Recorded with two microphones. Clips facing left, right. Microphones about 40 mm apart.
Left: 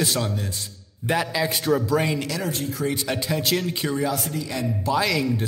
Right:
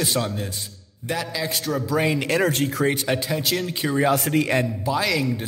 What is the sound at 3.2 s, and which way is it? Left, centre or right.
Speech, centre.